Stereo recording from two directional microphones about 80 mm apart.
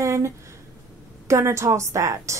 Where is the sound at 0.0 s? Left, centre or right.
Right.